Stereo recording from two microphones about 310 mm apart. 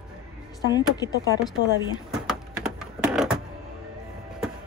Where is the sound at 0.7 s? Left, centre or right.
Centre.